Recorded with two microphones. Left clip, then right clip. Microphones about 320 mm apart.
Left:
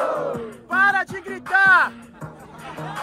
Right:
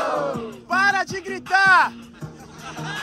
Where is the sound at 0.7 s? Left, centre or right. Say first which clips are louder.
Left 1 dB; centre.